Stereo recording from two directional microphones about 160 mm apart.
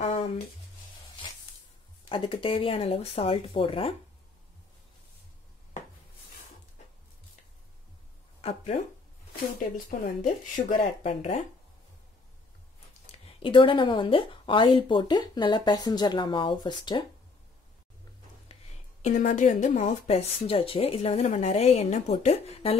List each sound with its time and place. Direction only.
0.0 s a sound: 35° left (ahead or behind)
2.0 s speech: 30° left (ahead or behind)
8.4 s speech: 45° left (ahead or behind)
9.8 s speech: 55° left (ahead or behind)
11.1 s speech: 45° left (ahead or behind)
13.4 s speech: 30° left (ahead or behind)
18.5 s a sound: 40° left (ahead or behind)
19.0 s speech: 50° left (ahead or behind)